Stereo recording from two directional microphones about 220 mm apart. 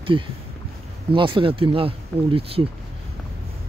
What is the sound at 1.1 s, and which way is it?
Speech, 20° right (ahead or behind).